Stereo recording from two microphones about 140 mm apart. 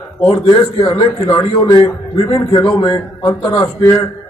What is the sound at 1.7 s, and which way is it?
A man's voice, 35° left (ahead or behind).